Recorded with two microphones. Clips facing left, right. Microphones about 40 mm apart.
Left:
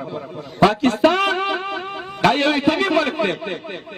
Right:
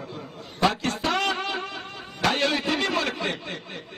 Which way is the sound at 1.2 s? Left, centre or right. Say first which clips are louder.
Left 6 dB; left.